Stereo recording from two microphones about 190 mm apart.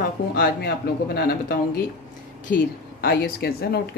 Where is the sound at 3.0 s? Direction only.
55° left (ahead or behind).